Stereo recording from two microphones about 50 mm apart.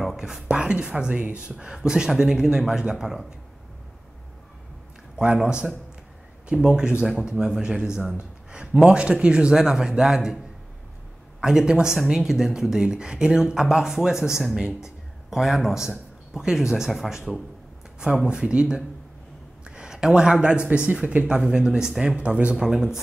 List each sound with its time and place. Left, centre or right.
0.0 s a man's voice: centre
5.2 s a man's voice: centre
11.4 s a man's voice: centre
15.2 s a man's voice: centre; by 21.3 s right
21.3 s a man's voice: centre